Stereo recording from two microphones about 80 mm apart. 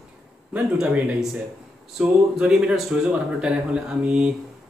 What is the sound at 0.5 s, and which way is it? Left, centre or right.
Speech, centre.